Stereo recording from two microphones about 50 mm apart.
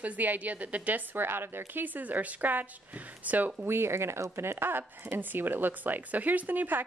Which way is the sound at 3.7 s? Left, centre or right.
Right.